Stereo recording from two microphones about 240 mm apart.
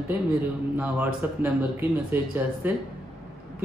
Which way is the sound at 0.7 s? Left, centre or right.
Centre.